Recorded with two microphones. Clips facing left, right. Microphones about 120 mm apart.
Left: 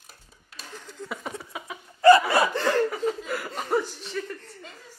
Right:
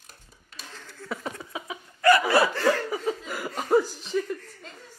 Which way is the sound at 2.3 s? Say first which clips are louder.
Right 1 dB; 20° left (ahead or behind).